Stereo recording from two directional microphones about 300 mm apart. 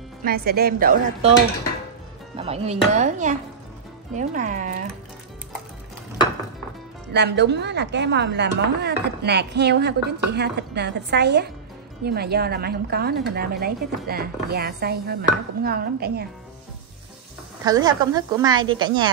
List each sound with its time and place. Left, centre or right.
0.2 s a woman's voice: right
2.3 s a woman's voice: centre
7.1 s speech: right
17.6 s a woman's voice: centre